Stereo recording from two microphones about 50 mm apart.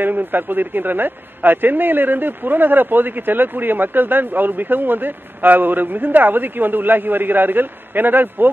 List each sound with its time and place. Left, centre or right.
0.0 s a man's voice: right